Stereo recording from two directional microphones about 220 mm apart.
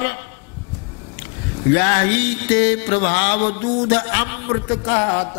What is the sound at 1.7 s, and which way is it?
A man's voice, 15° left (ahead or behind).